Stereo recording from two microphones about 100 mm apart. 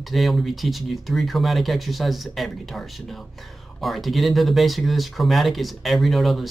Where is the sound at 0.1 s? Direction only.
Centre (ahead or behind).